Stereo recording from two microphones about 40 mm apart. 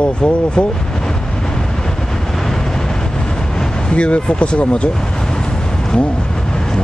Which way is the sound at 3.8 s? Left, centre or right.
Left.